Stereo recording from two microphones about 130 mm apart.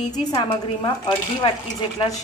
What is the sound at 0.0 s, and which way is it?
A woman's voice, 30° left (ahead or behind).